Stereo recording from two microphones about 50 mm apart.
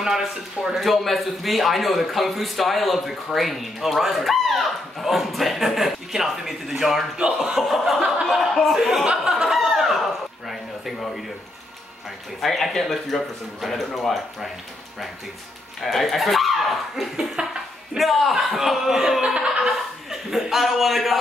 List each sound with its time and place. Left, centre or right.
0.0 s speech: centre
0.7 s a man's voice: centre
9.0 s chuckle: centre
10.5 s a sound: centre
12.4 s a man's voice: centre
15.8 s a man's voice: centre
17.4 s speech: centre
17.9 s a man's voice: centre